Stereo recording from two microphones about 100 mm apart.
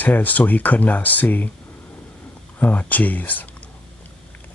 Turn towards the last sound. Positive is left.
turn(degrees=15)  # may be behind; listen again after turning